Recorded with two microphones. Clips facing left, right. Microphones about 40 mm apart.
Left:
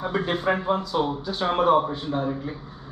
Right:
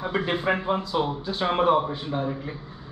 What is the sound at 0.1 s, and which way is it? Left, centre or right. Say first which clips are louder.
Speech: right 1 dB; right.